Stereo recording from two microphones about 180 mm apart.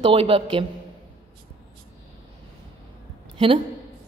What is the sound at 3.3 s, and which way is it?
Speech, 30° right (ahead or behind).